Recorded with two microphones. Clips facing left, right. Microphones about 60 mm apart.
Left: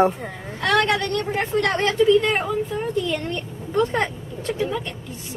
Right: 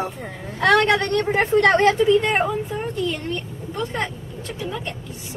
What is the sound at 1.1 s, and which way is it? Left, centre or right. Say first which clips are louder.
Speech: right 4 dB; right.